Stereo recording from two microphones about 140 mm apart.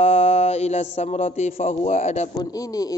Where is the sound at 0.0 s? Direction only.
50° left (ahead or behind).